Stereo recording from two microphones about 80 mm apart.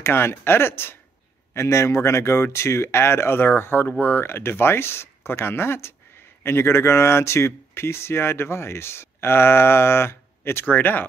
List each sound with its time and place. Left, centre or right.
0.0 s speech: left